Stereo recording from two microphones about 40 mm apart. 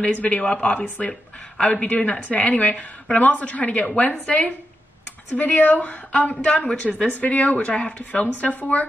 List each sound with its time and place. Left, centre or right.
0.0 s a woman's voice: left